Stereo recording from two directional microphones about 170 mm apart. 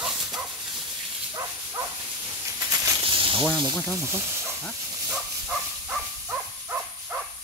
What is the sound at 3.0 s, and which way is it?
Snake, 30° right (ahead or behind).